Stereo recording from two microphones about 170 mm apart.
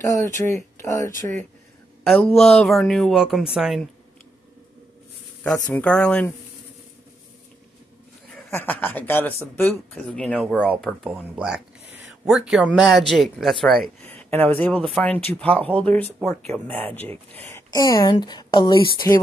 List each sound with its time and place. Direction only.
0.0 s speech: 20° left (ahead or behind)
2.4 s speech: 5° left (ahead or behind)
5.4 s speech: 10° left (ahead or behind)
8.5 s speech: 10° left (ahead or behind)
11.1 s speech: 5° right (ahead or behind)
14.1 s speech: 10° left (ahead or behind)